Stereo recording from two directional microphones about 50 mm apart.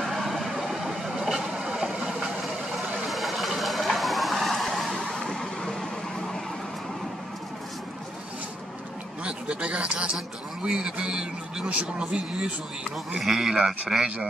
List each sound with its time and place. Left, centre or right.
0.0 s vehicle: centre
3.1 s a sound: centre
4.9 s vehicle: centre
9.2 s a sound: right
10.6 s a man's voice: centre
13.2 s a man's voice: centre